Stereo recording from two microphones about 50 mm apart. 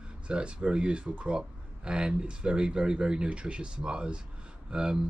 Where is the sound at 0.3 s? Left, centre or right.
Right.